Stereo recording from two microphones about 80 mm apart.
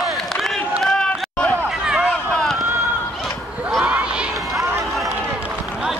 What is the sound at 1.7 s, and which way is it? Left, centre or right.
Run, centre.